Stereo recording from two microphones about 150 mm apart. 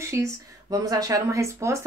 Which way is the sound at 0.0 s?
20° right (ahead or behind).